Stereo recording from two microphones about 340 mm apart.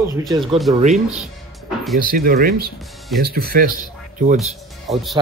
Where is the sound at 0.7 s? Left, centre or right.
Centre.